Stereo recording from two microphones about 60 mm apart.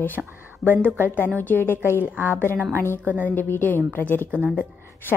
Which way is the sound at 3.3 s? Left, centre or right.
Left.